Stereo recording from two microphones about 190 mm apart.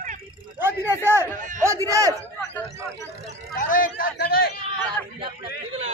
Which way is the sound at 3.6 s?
45° left (ahead or behind).